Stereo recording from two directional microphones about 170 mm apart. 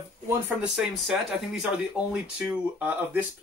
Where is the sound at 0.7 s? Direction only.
5° right (ahead or behind).